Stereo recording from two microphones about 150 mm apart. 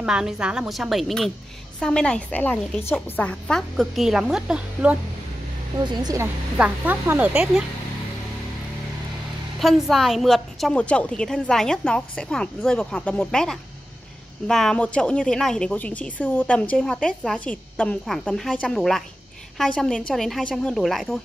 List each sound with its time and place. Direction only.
0.0 s a woman's voice: 5° right (ahead or behind)
5.8 s speech: 25° right (ahead or behind)
6.6 s speech: 10° right (ahead or behind)
9.6 s a woman's voice: centre (ahead or behind)